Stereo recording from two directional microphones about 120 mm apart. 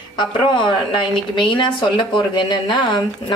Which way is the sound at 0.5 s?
40° left (ahead or behind).